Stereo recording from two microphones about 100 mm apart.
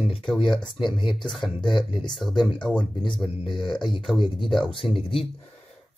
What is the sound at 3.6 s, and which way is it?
Speech, 50° left (ahead or behind).